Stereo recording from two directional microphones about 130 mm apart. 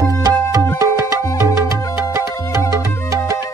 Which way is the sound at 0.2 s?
25° right (ahead or behind).